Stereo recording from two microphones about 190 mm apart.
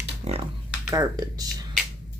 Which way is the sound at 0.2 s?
35° right (ahead or behind).